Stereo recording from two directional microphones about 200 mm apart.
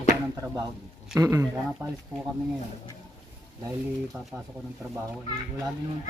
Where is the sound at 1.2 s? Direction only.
15° right (ahead or behind).